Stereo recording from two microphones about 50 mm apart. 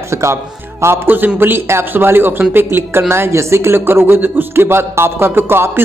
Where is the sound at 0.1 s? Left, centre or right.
Right.